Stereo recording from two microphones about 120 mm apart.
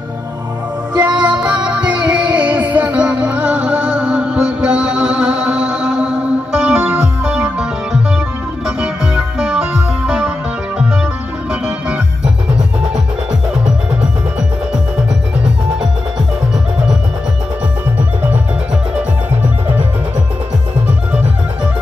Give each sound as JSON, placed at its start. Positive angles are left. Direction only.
{"t": 0.9, "sound": "music", "side_deg": -35}
{"t": 1.2, "sound": "music", "side_deg": -10}